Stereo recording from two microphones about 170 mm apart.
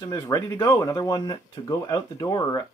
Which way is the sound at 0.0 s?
20° left (ahead or behind).